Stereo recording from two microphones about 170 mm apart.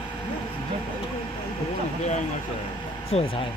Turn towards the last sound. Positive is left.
turn(degrees=35)  # may be behind; listen again after turning